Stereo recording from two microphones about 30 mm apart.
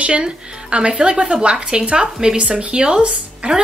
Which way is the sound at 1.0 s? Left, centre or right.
Right.